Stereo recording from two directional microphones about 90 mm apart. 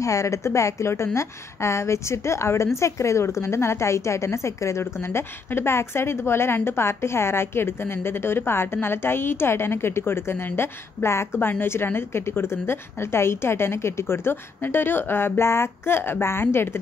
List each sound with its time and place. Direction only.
0.0 s a woman's voice: 35° left (ahead or behind)